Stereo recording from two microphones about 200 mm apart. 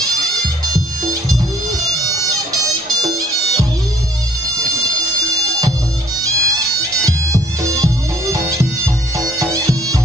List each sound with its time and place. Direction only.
2.2 s music: 15° right (ahead or behind)
6.2 s music: 15° right (ahead or behind)